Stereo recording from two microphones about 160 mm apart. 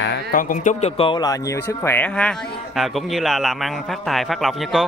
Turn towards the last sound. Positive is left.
turn(degrees=0)  # may be behind; listen again after turning